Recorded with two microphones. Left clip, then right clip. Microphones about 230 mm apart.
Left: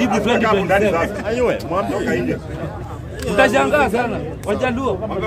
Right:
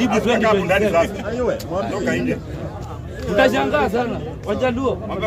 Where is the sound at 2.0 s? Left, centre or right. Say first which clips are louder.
Left 1 dB; right.